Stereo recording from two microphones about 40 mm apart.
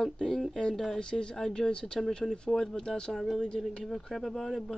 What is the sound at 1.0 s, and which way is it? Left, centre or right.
Speech, left.